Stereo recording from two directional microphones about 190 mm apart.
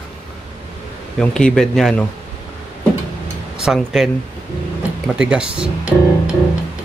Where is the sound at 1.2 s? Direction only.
5° left (ahead or behind).